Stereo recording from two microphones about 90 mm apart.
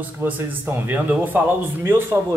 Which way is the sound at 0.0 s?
20° right (ahead or behind).